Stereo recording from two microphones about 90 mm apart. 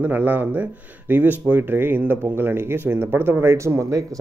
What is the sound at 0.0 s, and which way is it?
Speech, 20° right (ahead or behind).